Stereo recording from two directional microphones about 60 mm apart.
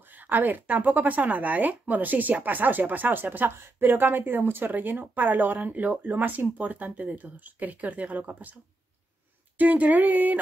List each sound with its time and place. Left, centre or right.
0.0 s speech: right
9.6 s speech: right